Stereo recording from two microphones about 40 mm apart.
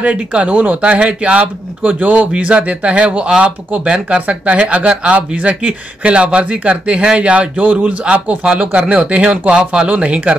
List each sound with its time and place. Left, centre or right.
0.0 s speech: right
7.6 s speech: right
8.5 s speech: right